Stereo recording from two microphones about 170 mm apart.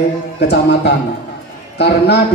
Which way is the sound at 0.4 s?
80° left.